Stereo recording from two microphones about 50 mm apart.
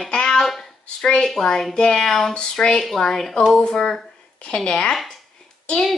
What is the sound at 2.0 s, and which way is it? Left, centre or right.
A woman's voice, centre.